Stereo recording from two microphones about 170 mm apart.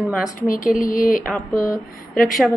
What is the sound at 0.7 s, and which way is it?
Speech, 55° left (ahead or behind).